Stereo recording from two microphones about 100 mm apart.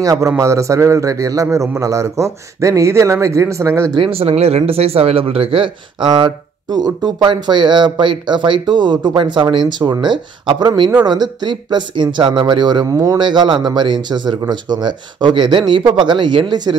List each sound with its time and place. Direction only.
0.0 s speech: 35° right (ahead or behind)
4.0 s speech: 75° right (ahead or behind); by 9.6 s 55° right (ahead or behind)
9.7 s speech: 45° right (ahead or behind)
13.2 s speech: 50° right (ahead or behind)